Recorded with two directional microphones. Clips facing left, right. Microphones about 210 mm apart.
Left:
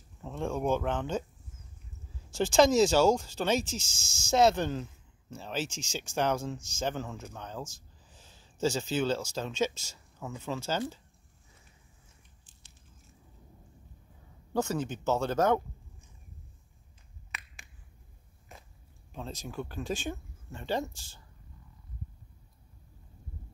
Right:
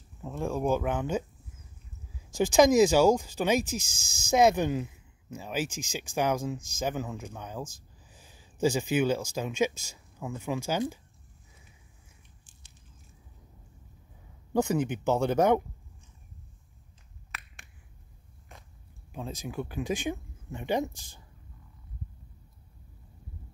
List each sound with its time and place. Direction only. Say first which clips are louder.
0.2 s speech: right 2 dB; 5° right (ahead or behind)
2.3 s speech: right 2 dB; 10° right (ahead or behind)
14.5 s speech: right 4 dB; 15° right (ahead or behind)
17.3 s finger snapping: right 1 dB; centre (ahead or behind)
19.1 s speech: right 3 dB; 10° right (ahead or behind)